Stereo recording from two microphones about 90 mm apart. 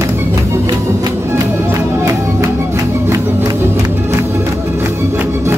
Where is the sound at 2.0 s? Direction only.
35° right (ahead or behind).